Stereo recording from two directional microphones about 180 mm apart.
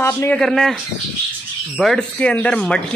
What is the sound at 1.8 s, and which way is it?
Speech, 5° left (ahead or behind).